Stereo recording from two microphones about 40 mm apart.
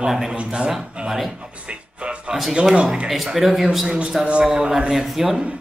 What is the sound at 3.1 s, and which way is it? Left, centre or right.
Speech, centre.